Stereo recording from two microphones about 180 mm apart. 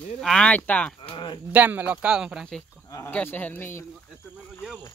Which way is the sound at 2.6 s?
15° left (ahead or behind).